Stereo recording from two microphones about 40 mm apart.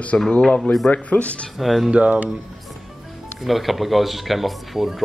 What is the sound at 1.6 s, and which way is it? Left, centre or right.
Speech, centre.